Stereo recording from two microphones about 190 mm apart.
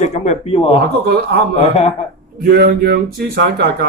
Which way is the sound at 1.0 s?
60° right (ahead or behind).